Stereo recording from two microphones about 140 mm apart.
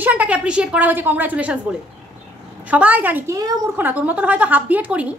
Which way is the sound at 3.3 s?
25° right (ahead or behind).